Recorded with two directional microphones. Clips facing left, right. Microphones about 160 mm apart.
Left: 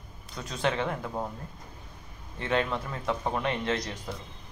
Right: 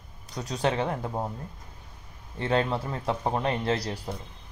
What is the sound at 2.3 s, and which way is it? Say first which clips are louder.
Speech: right 2 dB; 30° right (ahead or behind).